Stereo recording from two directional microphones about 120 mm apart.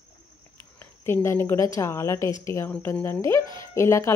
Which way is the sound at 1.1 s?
20° left (ahead or behind).